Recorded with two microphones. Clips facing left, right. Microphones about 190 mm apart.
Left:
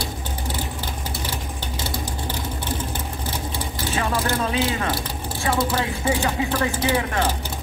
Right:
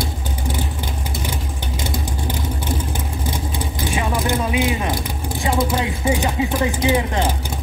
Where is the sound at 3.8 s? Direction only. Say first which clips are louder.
Right 2 dB; 15° right (ahead or behind).